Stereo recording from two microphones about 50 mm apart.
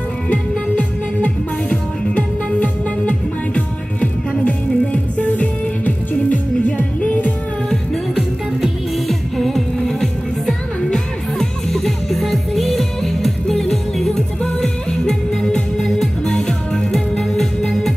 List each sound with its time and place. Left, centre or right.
0.3 s music: left
8.1 s music: centre
9.0 s music: centre